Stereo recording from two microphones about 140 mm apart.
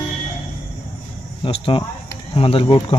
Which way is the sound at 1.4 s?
40° left (ahead or behind).